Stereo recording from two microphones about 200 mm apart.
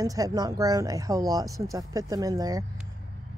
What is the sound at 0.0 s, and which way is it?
Speech, 15° right (ahead or behind).